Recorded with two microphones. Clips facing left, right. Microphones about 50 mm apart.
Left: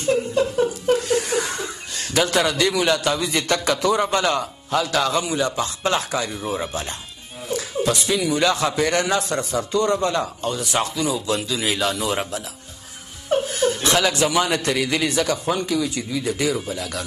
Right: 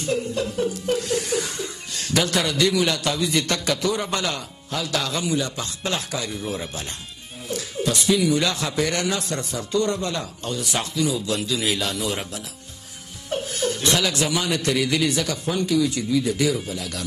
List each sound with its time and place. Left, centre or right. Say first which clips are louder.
0.0 s speech: left 5 dB; centre
2.0 s a man's voice: left 3 dB; centre
6.2 s a man's voice: left 3 dB; centre